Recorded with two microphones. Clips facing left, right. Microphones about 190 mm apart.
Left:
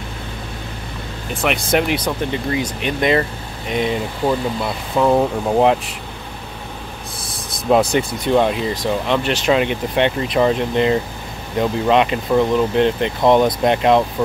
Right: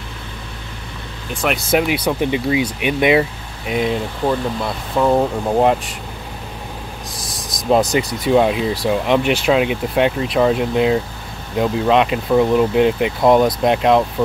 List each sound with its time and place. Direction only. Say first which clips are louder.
1.4 s speech: right 1 dB; centre (ahead or behind)
7.2 s a sound: right 1 dB; 30° left (ahead or behind)
8.1 s speech: right 1 dB; 5° right (ahead or behind)